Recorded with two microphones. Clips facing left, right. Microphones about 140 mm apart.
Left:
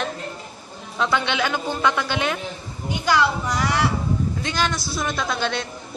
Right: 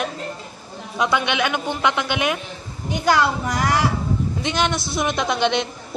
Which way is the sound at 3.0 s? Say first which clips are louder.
Right 2 dB; 50° right (ahead or behind).